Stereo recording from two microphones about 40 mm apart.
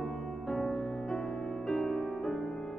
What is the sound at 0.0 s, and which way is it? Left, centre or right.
Music, centre.